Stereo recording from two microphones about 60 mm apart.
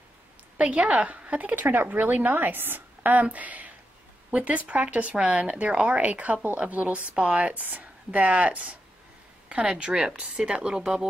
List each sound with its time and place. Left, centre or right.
0.6 s a woman's voice: right